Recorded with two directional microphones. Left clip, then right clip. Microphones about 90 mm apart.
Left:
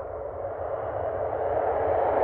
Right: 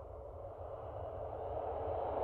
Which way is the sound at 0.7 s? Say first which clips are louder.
Left 16 dB; 10° right (ahead or behind).